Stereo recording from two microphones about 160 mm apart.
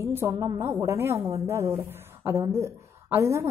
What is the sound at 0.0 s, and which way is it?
A woman's voice, 15° right (ahead or behind).